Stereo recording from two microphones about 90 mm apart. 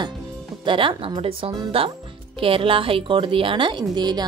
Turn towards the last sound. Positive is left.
turn(degrees=-55)  # may be behind; listen again after turning